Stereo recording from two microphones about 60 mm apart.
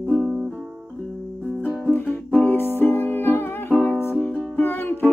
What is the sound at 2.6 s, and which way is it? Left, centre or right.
Music, left.